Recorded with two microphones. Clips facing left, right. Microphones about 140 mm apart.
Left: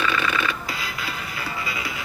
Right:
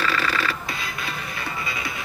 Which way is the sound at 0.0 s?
35° right (ahead or behind).